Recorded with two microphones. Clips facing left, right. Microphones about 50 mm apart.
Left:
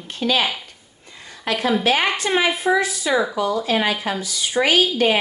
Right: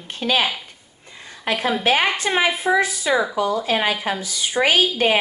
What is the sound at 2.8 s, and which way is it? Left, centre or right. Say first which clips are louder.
Speech: even; right.